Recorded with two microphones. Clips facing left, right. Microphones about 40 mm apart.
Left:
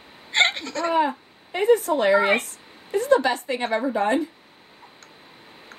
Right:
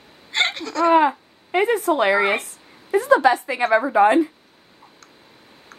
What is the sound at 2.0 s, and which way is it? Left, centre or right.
Speech, right.